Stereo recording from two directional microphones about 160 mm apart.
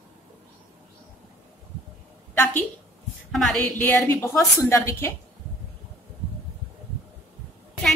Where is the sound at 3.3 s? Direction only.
Centre (ahead or behind).